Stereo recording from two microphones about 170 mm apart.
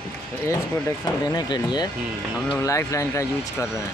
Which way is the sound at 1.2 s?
25° left (ahead or behind).